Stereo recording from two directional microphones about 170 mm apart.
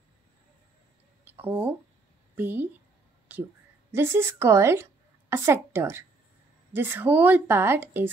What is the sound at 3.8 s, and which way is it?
A woman's voice, 15° right (ahead or behind).